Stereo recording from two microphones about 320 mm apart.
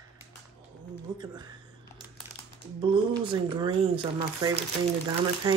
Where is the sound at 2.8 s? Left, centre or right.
Centre.